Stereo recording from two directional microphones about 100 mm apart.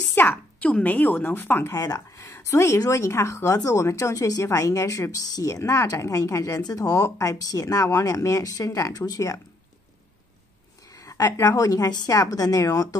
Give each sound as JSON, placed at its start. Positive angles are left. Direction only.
{"t": 0.1, "sound": "a woman's voice", "side_deg": 20}
{"t": 10.9, "sound": "a woman's voice", "side_deg": 35}